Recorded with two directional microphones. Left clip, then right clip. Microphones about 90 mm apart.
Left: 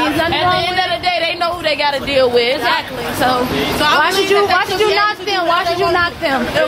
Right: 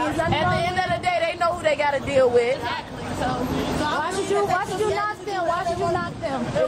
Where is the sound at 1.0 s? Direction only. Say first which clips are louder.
Left 6 dB; 5° right (ahead or behind).